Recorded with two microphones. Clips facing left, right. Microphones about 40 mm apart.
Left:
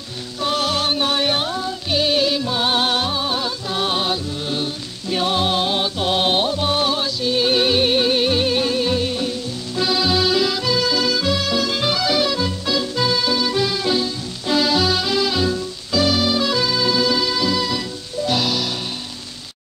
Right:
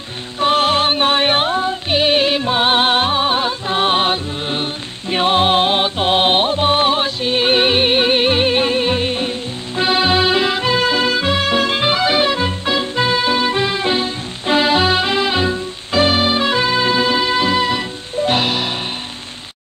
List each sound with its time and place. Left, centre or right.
0.4 s music: right